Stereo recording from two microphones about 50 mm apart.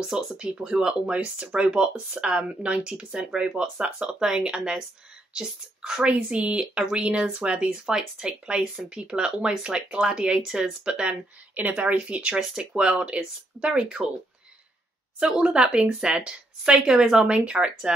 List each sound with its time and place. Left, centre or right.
0.0 s speech: centre
12.4 s speech: centre
15.1 s speech: centre